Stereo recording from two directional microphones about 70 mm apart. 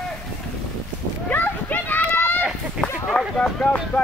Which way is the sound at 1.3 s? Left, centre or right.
Left.